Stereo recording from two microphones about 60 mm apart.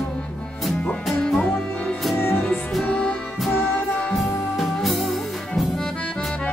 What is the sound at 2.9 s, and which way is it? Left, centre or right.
Music, centre.